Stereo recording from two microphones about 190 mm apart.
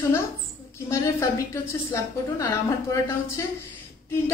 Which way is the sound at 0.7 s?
15° left (ahead or behind).